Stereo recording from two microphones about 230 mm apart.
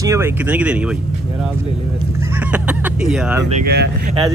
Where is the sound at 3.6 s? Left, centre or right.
Right.